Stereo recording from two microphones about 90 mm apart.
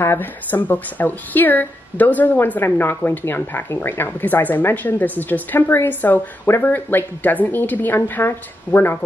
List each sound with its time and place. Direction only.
0.0 s a woman's voice: 25° left (ahead or behind)